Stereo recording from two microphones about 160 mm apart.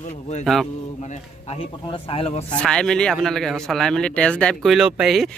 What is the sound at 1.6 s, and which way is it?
Speech, 35° left (ahead or behind).